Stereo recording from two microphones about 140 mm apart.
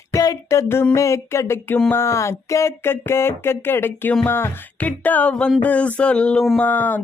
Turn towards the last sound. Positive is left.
turn(degrees=10)  # may be behind; listen again after turning